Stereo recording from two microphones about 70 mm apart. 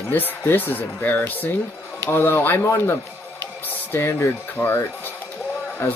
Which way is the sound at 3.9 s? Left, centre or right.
Left.